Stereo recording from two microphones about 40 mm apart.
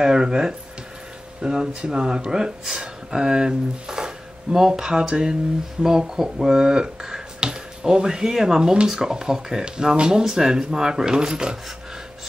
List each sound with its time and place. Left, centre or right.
0.0 s speech: centre